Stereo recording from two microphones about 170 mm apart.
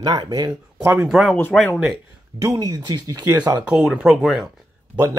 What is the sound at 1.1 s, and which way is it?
Speech, centre (ahead or behind).